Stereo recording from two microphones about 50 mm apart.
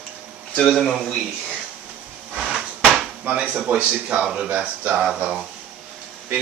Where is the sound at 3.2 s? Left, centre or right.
Right.